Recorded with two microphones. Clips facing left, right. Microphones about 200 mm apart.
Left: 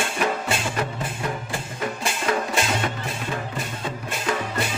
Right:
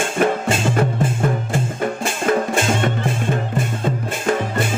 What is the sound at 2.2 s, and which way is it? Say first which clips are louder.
Music: right 6 dB; 50° right (ahead or behind).